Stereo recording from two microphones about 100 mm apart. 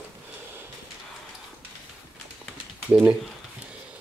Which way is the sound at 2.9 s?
20° right (ahead or behind).